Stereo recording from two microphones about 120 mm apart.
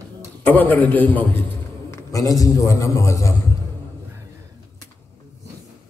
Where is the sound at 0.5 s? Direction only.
15° left (ahead or behind).